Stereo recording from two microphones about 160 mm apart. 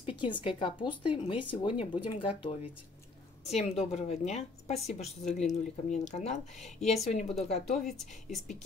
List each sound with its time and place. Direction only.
0.0 s a woman's voice: 30° left (ahead or behind); by 7.9 s 50° left (ahead or behind)